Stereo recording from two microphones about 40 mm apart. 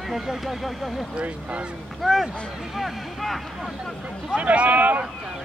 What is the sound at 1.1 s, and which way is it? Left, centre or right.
Speech, right.